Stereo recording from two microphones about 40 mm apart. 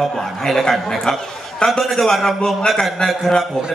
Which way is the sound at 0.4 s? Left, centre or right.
Centre.